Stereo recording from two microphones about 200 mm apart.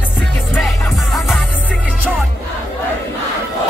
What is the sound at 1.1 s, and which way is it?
Music, centre (ahead or behind).